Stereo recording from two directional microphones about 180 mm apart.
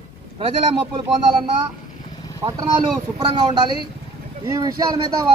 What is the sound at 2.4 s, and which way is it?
Speech, 20° right (ahead or behind).